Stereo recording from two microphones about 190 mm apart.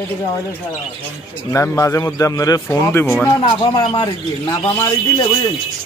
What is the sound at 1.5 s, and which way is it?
A man's voice, 15° left (ahead or behind).